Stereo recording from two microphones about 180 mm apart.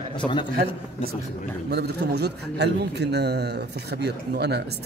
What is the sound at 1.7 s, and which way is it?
A man's voice, 65° right (ahead or behind).